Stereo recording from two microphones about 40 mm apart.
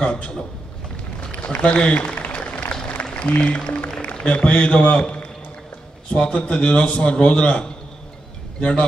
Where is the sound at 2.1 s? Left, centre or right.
Left.